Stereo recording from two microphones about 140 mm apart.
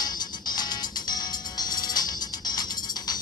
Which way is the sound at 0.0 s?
30° left (ahead or behind).